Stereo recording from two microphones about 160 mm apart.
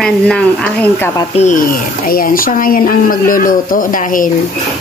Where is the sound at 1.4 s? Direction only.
55° left (ahead or behind).